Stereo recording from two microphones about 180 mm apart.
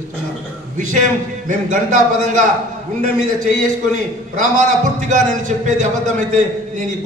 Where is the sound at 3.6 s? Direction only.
45° right (ahead or behind).